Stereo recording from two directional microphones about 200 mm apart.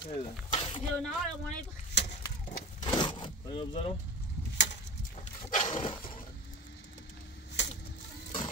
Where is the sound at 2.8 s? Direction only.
20° left (ahead or behind).